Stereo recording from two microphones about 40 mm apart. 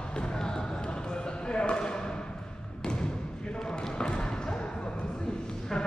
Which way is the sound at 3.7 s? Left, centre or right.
Left.